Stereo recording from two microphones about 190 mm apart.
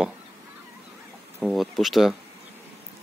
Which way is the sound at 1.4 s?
Centre (ahead or behind).